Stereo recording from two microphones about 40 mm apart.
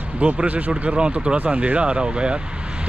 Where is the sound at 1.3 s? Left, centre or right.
Right.